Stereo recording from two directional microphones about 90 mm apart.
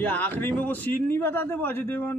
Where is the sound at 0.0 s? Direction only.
20° left (ahead or behind).